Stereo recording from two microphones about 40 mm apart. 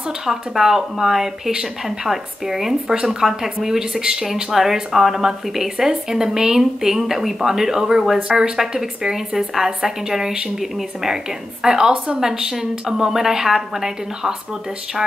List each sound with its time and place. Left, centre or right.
0.2 s speech: centre
8.2 s speech: right